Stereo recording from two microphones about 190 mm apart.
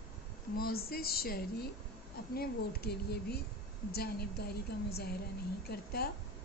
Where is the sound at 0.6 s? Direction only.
55° left (ahead or behind).